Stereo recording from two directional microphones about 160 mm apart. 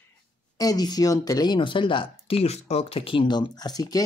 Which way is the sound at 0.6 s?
25° left (ahead or behind).